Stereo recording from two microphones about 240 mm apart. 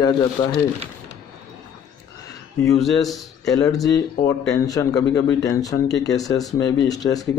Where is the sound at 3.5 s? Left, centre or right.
Centre.